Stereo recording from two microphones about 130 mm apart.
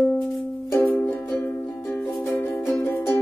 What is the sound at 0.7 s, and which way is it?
Music, 15° left (ahead or behind).